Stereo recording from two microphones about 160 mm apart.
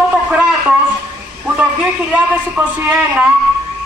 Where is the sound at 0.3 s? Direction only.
5° right (ahead or behind).